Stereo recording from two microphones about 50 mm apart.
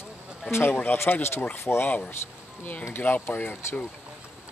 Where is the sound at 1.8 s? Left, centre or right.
Left.